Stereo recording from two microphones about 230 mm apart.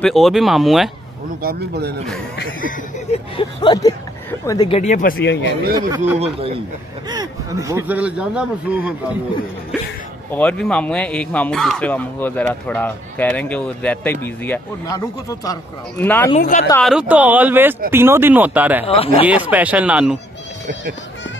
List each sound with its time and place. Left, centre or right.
0.0 s speech: centre
1.4 s speech: right
3.1 s speech: left
5.8 s speech: centre
6.1 s speech: right
7.1 s speech: centre
10.3 s speech: centre
16.3 s speech: left
16.8 s speech: centre
18.9 s speech: left
19.2 s speech: centre